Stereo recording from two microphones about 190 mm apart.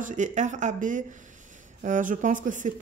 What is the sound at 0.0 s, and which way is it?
A woman's voice, 40° right (ahead or behind).